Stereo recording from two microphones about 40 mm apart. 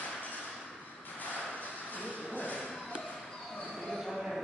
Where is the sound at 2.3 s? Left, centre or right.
Left.